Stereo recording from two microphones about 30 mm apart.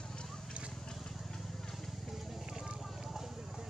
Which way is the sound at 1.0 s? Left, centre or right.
Centre.